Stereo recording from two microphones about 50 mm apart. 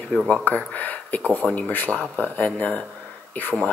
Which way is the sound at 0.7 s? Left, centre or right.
Left.